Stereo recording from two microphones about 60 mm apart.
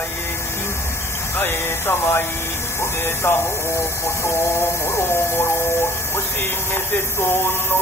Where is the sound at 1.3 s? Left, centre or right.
Left.